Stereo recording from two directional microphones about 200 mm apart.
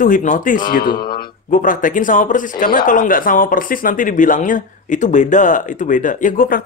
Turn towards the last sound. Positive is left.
turn(degrees=45)  # may be behind; listen again after turning